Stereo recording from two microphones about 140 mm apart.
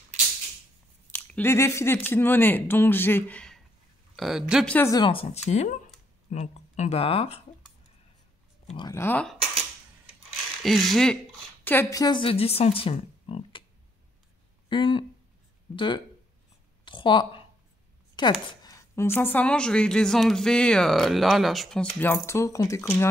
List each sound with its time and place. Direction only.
1.1 s a woman's voice: 15° left (ahead or behind)
4.2 s speech: 5° right (ahead or behind)
4.8 s speech: 25° left (ahead or behind)
5.1 s speech: 50° left (ahead or behind)
8.9 s a woman's voice: 15° left (ahead or behind)
10.6 s speech: centre (ahead or behind)
11.6 s a woman's voice: 15° left (ahead or behind)
11.9 s speech: 30° left (ahead or behind)
14.7 s a woman's voice: 35° left (ahead or behind); by 23.0 s 20° left (ahead or behind)